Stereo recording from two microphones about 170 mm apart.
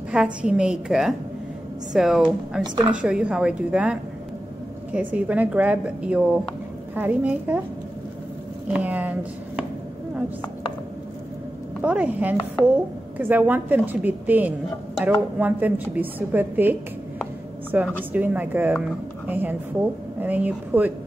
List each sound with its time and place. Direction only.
0.1 s a woman's voice: 5° right (ahead or behind)
2.6 s a woman's voice: 25° right (ahead or behind)
2.9 s a woman's voice: 5° right (ahead or behind)
8.7 s speech: 10° right (ahead or behind)
11.8 s a woman's voice: 10° right (ahead or behind)